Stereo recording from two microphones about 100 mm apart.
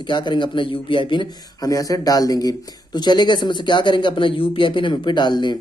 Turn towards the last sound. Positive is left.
turn(degrees=50)  # may be behind; listen again after turning